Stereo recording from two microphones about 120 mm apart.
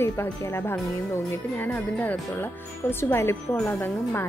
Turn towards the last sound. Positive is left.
turn(degrees=20)  # may be behind; listen again after turning